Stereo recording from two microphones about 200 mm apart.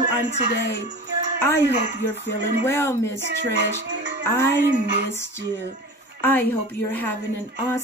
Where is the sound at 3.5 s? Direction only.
55° right (ahead or behind).